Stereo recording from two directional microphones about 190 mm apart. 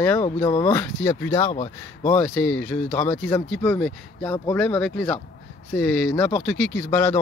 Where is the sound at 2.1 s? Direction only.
10° left (ahead or behind).